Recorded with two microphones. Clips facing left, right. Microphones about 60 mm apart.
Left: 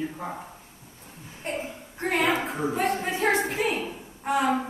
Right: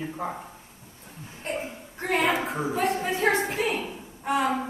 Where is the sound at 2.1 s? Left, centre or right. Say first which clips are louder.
Even; centre.